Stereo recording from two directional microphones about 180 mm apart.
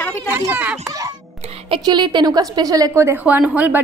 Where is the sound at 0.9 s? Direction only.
20° right (ahead or behind).